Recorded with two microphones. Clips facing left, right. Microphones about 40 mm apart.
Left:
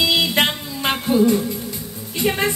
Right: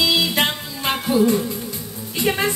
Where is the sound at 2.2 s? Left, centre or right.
Centre.